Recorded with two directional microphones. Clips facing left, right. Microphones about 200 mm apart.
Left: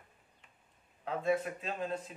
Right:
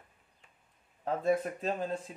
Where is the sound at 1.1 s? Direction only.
45° right (ahead or behind).